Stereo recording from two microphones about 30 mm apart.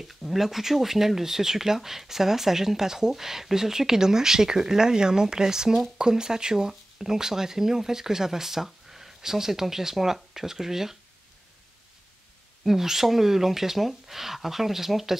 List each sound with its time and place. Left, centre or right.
0.0 s speech: centre
12.6 s speech: centre